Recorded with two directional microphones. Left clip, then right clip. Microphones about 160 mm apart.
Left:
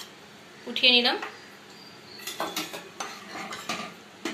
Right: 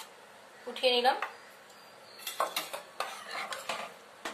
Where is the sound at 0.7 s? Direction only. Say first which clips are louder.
Left 7 dB; 55° right (ahead or behind).